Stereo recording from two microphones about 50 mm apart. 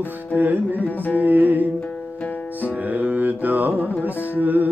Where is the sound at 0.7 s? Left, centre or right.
Left.